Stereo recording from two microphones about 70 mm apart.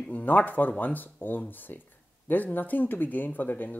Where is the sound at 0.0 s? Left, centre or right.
Left.